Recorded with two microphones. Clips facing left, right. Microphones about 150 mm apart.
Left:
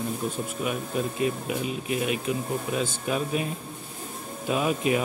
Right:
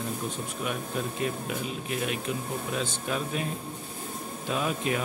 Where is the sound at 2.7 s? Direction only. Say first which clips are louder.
Left 3 dB; 10° left (ahead or behind).